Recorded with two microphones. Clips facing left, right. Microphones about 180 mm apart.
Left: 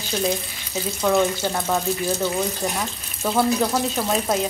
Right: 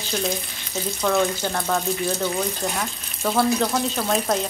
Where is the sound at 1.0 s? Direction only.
10° left (ahead or behind).